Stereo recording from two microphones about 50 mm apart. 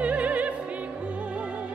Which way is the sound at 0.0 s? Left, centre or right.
Right.